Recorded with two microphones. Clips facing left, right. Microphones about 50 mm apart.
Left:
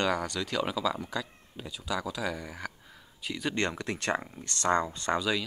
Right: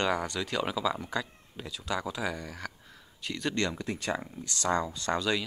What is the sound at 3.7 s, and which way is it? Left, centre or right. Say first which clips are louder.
Speech: left 2 dB; left.